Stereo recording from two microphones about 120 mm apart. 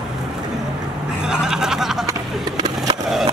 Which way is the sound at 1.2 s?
5° right (ahead or behind).